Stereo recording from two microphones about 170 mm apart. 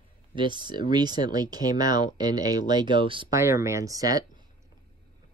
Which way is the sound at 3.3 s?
15° right (ahead or behind).